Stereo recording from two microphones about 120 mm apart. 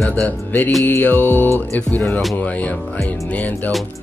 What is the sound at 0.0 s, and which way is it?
Speech, 10° left (ahead or behind).